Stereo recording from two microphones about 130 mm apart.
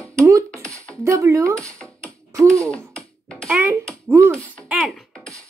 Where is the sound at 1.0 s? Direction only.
25° right (ahead or behind).